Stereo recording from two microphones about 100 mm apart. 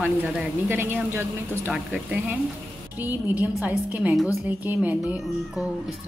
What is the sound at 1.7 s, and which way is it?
A woman's voice, 10° right (ahead or behind).